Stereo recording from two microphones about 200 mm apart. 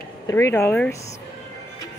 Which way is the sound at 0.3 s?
15° left (ahead or behind).